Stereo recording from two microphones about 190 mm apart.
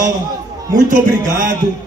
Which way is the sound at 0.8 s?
40° right (ahead or behind).